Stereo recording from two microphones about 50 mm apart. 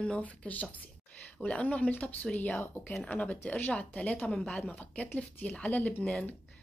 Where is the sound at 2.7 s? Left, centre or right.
Left.